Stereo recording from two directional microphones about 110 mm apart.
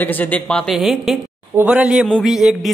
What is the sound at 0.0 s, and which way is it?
Speech, 15° left (ahead or behind).